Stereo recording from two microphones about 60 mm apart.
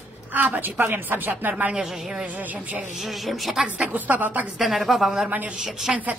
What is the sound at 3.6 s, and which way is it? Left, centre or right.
Speech, right.